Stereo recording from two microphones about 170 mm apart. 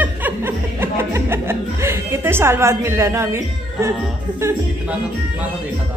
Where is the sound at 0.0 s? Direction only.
10° right (ahead or behind).